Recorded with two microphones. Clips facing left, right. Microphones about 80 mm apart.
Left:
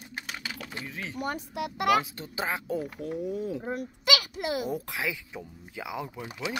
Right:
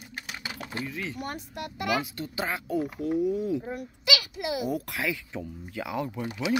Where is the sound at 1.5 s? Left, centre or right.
Left.